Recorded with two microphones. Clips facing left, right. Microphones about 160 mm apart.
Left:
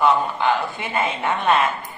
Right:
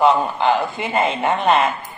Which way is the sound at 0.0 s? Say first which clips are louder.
Right 3 dB; 20° right (ahead or behind).